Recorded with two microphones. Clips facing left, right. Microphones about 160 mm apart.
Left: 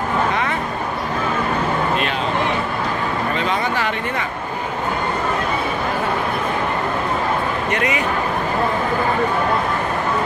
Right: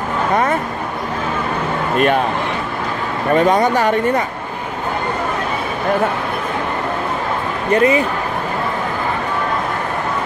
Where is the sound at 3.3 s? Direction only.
45° right (ahead or behind).